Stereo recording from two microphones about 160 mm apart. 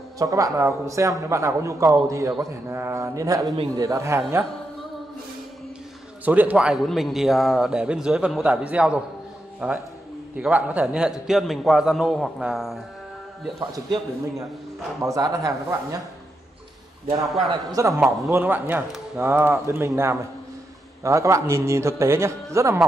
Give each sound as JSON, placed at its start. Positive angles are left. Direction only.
{"t": 0.2, "sound": "a man's voice", "side_deg": -20}
{"t": 6.2, "sound": "a man's voice", "side_deg": -10}
{"t": 13.6, "sound": "a man's voice", "side_deg": -30}
{"t": 17.2, "sound": "a man's voice", "side_deg": 0}
{"t": 17.5, "sound": "a man's voice", "side_deg": -20}